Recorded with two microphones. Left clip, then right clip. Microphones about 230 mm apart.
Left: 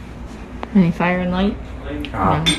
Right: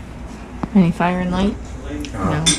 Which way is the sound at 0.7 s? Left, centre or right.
Centre.